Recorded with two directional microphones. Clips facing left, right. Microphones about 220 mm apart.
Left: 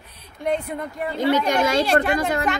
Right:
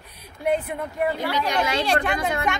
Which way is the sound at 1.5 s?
45° left (ahead or behind).